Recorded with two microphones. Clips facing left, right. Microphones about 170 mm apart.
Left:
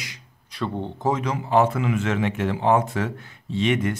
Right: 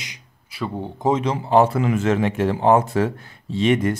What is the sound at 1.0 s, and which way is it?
A man's voice, 25° right (ahead or behind).